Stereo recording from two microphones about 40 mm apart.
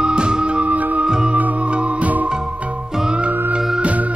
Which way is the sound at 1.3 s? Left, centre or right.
Right.